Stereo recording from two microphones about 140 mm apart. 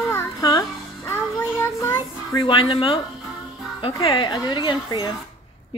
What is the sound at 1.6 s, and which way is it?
Child singing, 20° left (ahead or behind).